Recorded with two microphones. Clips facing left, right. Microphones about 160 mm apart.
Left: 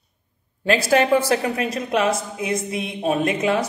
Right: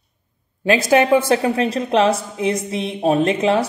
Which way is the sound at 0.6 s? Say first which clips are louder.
Right 3 dB; 20° right (ahead or behind).